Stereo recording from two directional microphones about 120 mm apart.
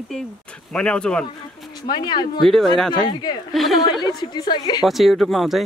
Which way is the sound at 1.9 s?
35° left (ahead or behind).